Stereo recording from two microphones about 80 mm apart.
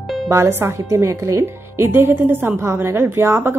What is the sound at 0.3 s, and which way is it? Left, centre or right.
Speech, right.